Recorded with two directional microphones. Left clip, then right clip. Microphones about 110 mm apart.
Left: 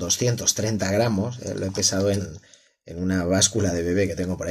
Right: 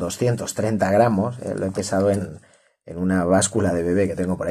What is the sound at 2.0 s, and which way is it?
Speech, 25° left (ahead or behind).